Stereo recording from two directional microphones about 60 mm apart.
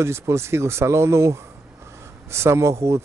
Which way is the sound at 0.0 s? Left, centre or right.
Right.